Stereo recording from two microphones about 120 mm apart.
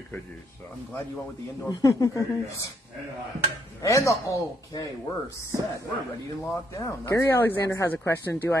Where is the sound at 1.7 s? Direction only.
30° left (ahead or behind).